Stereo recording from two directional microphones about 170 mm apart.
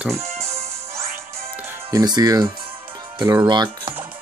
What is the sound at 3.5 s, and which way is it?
Speech, 25° right (ahead or behind).